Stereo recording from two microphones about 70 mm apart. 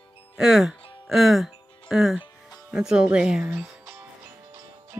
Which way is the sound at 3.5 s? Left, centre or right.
Right.